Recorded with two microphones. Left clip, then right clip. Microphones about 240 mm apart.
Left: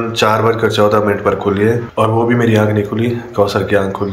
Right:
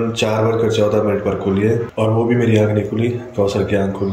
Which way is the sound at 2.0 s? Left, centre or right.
Centre.